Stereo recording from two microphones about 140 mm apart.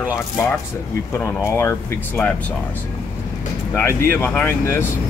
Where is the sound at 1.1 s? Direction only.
15° left (ahead or behind).